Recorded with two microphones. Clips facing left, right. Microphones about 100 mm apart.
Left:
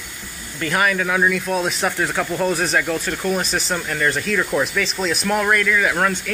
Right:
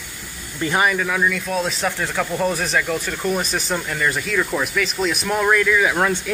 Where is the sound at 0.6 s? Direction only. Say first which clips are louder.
Right 1 dB; 20° right (ahead or behind).